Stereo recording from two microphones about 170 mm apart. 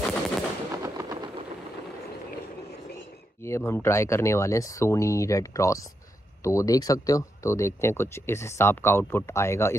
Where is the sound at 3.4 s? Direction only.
15° left (ahead or behind).